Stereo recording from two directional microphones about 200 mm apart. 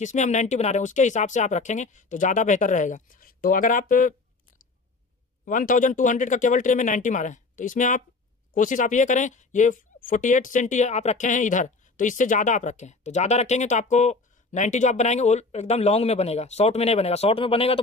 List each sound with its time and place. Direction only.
0.0 s speech: 35° left (ahead or behind)
5.4 s speech: 40° left (ahead or behind)